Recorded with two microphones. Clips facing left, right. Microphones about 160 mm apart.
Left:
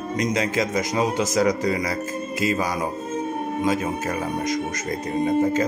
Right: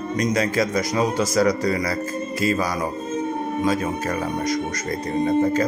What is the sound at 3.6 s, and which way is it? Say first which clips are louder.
A man's voice: right 1 dB; 20° left (ahead or behind).